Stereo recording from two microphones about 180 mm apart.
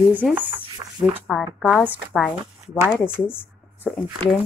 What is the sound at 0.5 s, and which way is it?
Speech, 25° right (ahead or behind).